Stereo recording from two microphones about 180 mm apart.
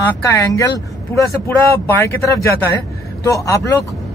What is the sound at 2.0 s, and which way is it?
A man's voice, 15° left (ahead or behind).